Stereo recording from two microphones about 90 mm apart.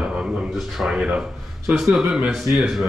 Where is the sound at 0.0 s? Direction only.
10° right (ahead or behind).